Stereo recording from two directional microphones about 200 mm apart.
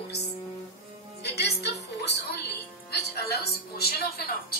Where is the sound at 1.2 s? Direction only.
55° left (ahead or behind).